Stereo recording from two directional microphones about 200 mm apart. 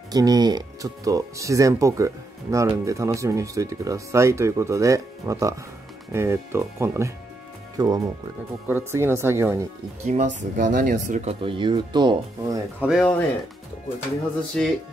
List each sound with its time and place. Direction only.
0.1 s speech: 20° right (ahead or behind)
10.0 s speech: 40° right (ahead or behind); by 12.5 s 20° right (ahead or behind)
12.8 s speech: centre (ahead or behind)
14.6 s speech: 5° left (ahead or behind)